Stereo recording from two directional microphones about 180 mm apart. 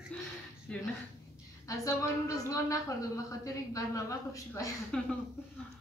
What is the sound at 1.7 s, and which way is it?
A woman's voice, 20° left (ahead or behind).